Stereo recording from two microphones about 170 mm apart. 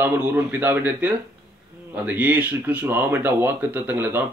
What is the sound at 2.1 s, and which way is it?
Speech, 10° right (ahead or behind).